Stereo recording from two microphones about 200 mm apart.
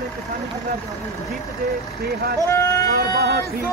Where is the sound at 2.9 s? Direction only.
55° right (ahead or behind).